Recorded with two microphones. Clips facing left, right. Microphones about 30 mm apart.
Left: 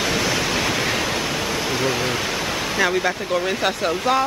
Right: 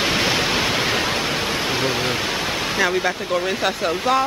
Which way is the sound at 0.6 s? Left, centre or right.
Centre.